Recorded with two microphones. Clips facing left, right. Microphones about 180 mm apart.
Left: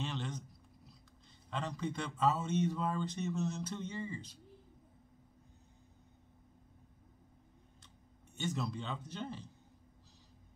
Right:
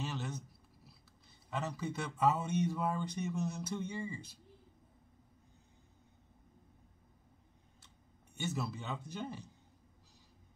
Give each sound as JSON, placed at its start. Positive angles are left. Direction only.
{"t": 0.0, "sound": "a sound", "side_deg": -5}
{"t": 1.5, "sound": "speech", "side_deg": -10}
{"t": 8.4, "sound": "speech", "side_deg": -5}